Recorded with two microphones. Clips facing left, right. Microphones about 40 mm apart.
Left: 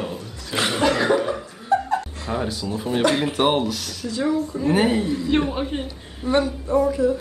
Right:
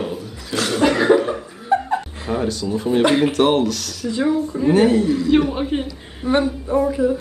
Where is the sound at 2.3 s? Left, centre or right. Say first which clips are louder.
Right 4 dB; centre.